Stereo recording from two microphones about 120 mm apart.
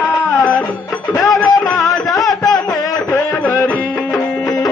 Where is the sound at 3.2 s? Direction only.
15° left (ahead or behind).